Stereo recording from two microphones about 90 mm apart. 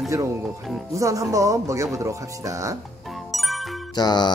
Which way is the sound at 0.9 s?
35° right (ahead or behind).